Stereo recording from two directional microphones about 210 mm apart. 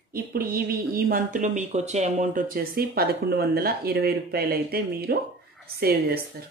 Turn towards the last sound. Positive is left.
turn(degrees=-45)  # may be behind; listen again after turning